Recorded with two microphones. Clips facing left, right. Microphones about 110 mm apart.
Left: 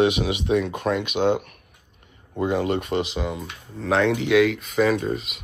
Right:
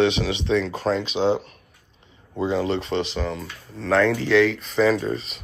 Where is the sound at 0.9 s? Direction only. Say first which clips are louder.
Even; 30° right (ahead or behind).